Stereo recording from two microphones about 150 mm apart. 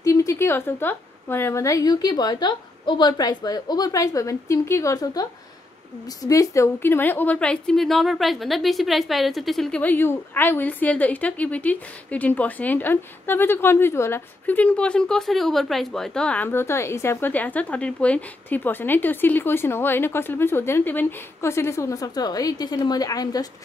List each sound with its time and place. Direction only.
0.0 s a woman's voice: 20° left (ahead or behind)